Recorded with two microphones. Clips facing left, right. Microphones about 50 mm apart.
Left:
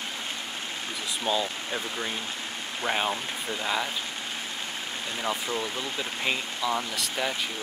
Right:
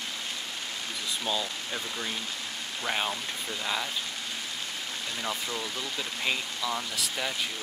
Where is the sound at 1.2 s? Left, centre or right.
Centre.